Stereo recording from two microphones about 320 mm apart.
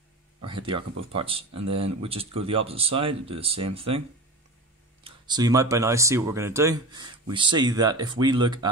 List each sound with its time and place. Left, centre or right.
0.5 s speech: centre
5.0 s speech: centre